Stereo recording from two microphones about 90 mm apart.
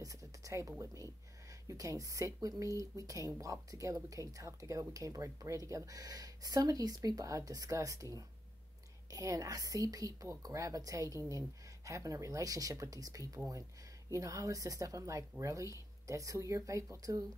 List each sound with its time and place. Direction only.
0.0 s speech: 40° right (ahead or behind)